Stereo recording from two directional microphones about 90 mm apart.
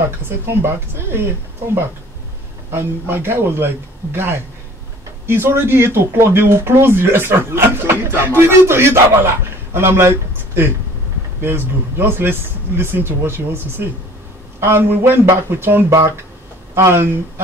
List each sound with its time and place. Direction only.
0.2 s speech: 25° right (ahead or behind)
2.7 s speech: 25° right (ahead or behind)